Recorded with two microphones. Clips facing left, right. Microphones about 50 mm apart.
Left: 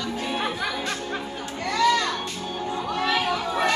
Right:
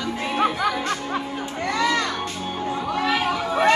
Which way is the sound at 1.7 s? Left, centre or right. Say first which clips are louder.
Left 1 dB; right.